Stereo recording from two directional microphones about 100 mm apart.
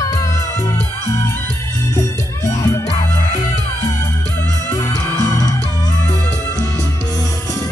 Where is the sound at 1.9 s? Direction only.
35° left (ahead or behind).